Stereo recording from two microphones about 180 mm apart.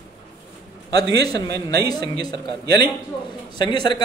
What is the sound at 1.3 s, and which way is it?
Speech, 65° right (ahead or behind).